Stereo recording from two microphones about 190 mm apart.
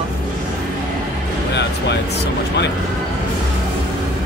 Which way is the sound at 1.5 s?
65° left (ahead or behind).